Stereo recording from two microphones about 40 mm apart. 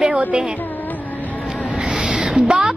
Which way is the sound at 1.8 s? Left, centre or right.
Right.